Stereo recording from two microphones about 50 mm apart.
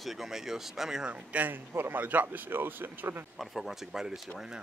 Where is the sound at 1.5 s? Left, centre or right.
Right.